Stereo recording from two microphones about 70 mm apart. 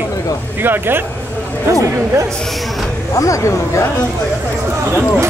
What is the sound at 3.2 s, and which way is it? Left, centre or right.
Speech, left.